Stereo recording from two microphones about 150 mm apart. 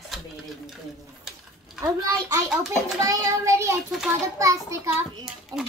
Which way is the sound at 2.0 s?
25° right (ahead or behind).